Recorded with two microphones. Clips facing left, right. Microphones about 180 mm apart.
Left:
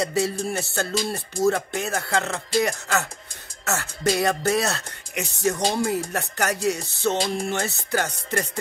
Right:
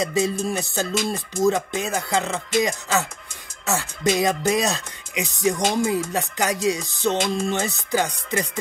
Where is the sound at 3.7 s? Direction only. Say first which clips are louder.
Right 2 dB; 15° right (ahead or behind).